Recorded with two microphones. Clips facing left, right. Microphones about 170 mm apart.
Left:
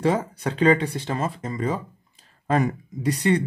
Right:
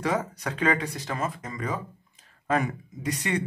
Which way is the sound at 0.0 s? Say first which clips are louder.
Left 5 dB; 30° left (ahead or behind).